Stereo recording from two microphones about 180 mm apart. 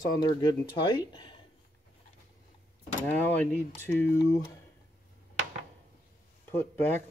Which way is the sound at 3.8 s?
10° left (ahead or behind).